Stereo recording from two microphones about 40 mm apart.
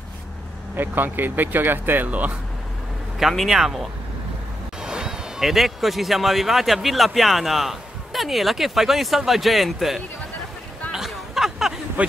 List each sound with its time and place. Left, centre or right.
0.7 s speech: right
2.0 s speech: right
3.4 s speech: centre
4.8 s speech: centre
10.9 s chatter: centre